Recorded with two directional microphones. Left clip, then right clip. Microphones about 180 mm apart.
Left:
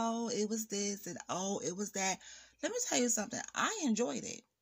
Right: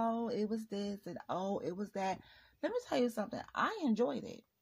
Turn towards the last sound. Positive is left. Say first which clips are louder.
# right 1 dB
turn(degrees=35)  # may be behind; listen again after turning